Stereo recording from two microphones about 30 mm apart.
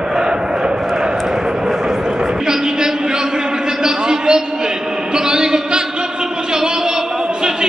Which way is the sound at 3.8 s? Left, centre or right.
Right.